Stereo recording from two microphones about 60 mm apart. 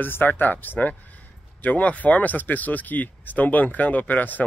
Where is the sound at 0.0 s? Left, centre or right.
Left.